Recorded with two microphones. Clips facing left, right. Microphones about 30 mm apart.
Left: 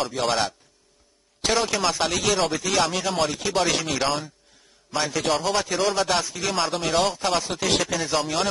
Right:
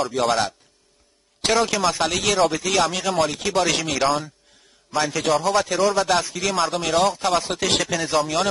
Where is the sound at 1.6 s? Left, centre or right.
Centre.